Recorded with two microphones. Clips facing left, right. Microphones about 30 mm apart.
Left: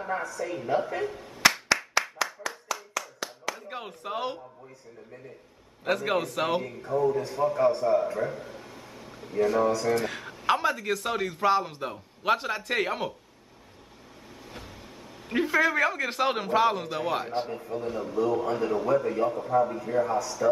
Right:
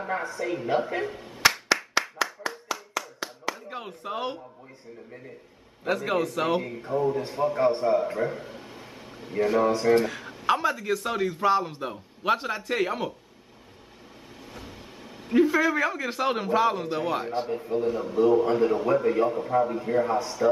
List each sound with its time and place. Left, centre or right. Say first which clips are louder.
0.2 s a woman's voice: right 3 dB; right
1.0 s a sound: even; centre
1.5 s clapping: right 1 dB; centre
2.4 s clapping: right 1 dB; centre
3.7 s a man's voice: right 1 dB; centre
5.9 s a man's voice: right 1 dB; centre
6.8 s a man's voice: even; right
10.0 s a man's voice: right 1 dB; centre
15.2 s a man's voice: right 3 dB; centre
17.5 s a man's voice: right 6 dB; right
17.8 s a man's voice: right 5 dB; centre
18.1 s a man's voice: right 5 dB; right